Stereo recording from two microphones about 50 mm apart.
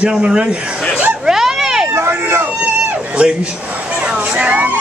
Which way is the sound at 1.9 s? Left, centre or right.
Right.